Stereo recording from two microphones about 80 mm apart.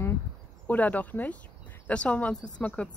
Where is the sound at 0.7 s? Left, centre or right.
Left.